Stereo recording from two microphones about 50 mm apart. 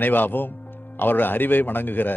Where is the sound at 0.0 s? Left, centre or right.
Left.